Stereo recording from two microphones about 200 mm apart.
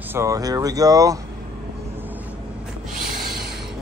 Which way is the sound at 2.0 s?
10° right (ahead or behind).